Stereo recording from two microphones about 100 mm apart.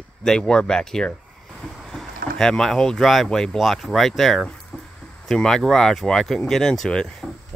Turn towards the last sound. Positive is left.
turn(degrees=10)  # may be behind; listen again after turning